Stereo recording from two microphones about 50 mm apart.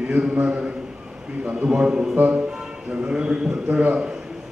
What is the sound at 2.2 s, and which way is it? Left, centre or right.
A man's voice, right.